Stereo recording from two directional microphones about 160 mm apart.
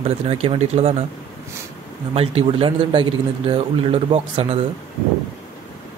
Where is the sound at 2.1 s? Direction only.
35° right (ahead or behind).